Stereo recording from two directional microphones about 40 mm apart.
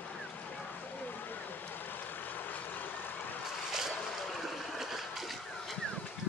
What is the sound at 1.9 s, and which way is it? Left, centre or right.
Vehicle, left.